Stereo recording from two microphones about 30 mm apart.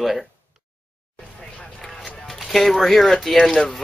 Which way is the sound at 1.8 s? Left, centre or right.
Centre.